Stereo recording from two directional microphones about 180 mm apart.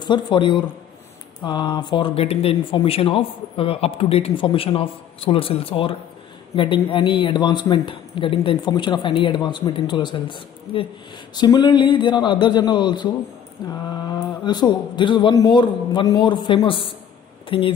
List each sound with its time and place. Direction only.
0.0 s a man's voice: 25° left (ahead or behind)